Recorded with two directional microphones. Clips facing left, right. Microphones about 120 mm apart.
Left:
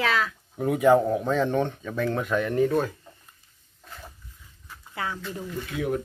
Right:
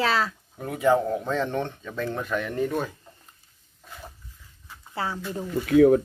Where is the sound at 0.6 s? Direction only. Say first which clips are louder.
Left 3 dB; 15° left (ahead or behind).